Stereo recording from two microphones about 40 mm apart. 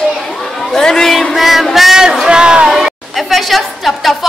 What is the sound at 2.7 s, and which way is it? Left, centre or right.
A woman's voice, centre.